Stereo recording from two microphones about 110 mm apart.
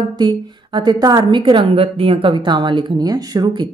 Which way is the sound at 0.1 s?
40° right (ahead or behind).